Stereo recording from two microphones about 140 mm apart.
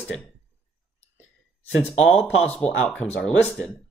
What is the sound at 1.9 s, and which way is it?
Speech, 5° left (ahead or behind).